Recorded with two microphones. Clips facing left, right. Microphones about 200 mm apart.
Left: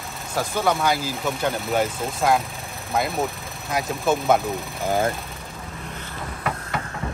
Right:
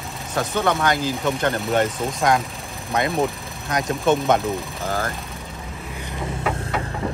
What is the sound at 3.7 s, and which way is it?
Speech, 5° left (ahead or behind).